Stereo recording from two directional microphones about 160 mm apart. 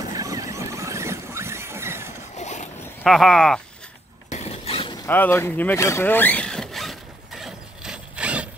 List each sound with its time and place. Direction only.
0.0 s vehicle: 20° right (ahead or behind)
2.3 s vehicle: 45° left (ahead or behind)
3.0 s speech: centre (ahead or behind)
4.3 s a sound: 40° left (ahead or behind)
5.0 s vehicle: 15° left (ahead or behind); by 8.5 s 5° right (ahead or behind)